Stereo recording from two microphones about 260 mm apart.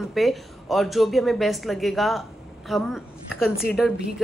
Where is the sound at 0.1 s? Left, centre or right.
Centre.